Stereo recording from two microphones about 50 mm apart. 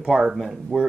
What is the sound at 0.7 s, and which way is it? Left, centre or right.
Speech, centre.